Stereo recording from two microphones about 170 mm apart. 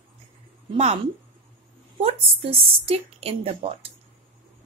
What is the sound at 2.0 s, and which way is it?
Speech, 35° right (ahead or behind).